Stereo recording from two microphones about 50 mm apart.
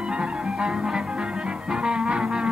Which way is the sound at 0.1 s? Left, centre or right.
Centre.